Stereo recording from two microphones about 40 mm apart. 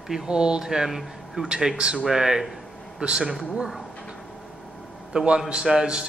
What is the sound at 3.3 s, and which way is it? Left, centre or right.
Speech, centre.